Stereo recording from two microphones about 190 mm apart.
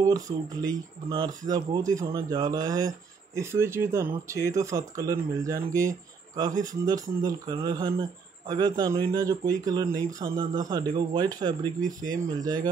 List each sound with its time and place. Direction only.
0.0 s speech: 20° right (ahead or behind)